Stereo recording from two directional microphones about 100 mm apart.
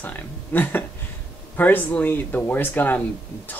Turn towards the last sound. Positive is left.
turn(degrees=20)  # may be behind; listen again after turning